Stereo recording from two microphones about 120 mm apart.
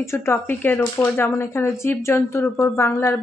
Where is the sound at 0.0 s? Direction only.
20° left (ahead or behind).